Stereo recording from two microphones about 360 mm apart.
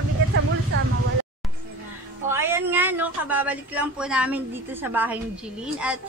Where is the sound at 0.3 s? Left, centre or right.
Right.